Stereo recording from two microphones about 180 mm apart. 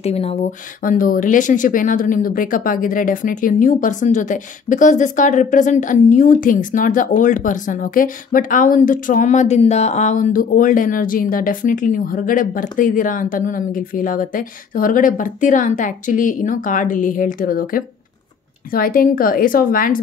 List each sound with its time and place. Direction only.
0.0 s speech: 35° left (ahead or behind)
0.8 s speech: 50° left (ahead or behind)